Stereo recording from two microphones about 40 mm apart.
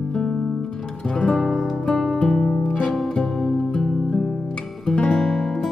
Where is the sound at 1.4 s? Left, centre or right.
Centre.